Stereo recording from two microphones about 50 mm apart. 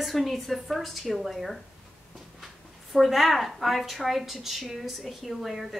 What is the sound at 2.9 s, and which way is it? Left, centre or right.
A woman's voice, centre.